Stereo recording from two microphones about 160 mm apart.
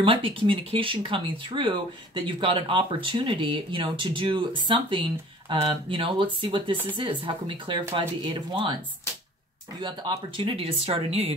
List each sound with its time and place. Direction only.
0.0 s speech: 35° right (ahead or behind)
9.8 s speech: 30° right (ahead or behind)